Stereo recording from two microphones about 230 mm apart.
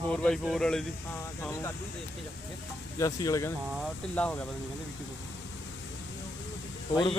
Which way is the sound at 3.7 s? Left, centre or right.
Centre.